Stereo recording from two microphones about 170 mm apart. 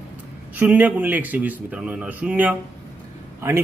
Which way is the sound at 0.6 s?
10° right (ahead or behind).